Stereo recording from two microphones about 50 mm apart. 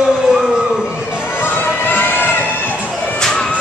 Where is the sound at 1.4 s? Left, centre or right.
Left.